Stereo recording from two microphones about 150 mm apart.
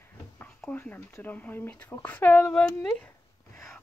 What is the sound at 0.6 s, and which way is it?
A woman's voice, 10° left (ahead or behind).